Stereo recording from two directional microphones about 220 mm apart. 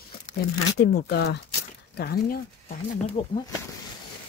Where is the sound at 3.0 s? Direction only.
25° left (ahead or behind).